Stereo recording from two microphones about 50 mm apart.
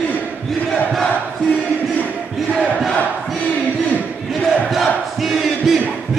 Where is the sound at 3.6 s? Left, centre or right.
Left.